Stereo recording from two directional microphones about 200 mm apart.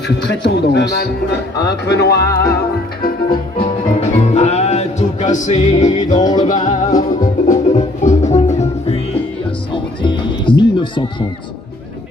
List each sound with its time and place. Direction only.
0.3 s a man's voice: 55° left (ahead or behind)
3.3 s music: 25° left (ahead or behind)
6.1 s music: 20° left (ahead or behind)
6.4 s music: 40° left (ahead or behind); by 11.2 s 25° left (ahead or behind)